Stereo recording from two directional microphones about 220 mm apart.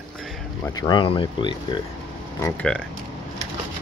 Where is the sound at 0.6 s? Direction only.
15° left (ahead or behind).